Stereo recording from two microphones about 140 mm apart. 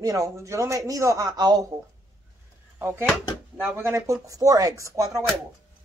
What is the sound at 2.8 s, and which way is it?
Speech, 15° right (ahead or behind).